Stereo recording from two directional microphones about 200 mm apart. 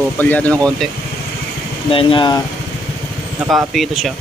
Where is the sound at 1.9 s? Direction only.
25° left (ahead or behind).